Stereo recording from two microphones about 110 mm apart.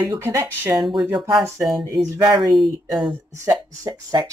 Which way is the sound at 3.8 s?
30° right (ahead or behind).